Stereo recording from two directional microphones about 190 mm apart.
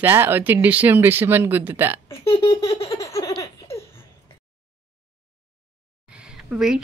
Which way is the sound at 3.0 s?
15° left (ahead or behind).